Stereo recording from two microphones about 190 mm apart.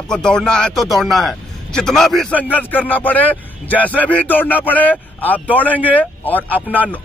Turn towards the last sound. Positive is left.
turn(degrees=10)  # may be behind; listen again after turning